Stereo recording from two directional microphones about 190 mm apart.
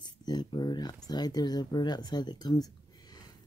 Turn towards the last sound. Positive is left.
turn(degrees=20)  # may be behind; listen again after turning